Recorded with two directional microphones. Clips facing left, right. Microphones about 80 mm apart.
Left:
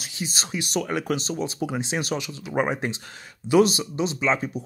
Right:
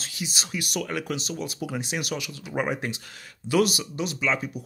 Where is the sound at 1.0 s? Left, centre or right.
Left.